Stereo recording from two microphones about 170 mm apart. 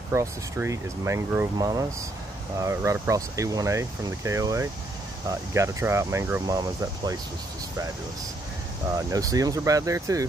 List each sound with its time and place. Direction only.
0.1 s speech: 15° right (ahead or behind)
8.9 s speech: 20° right (ahead or behind)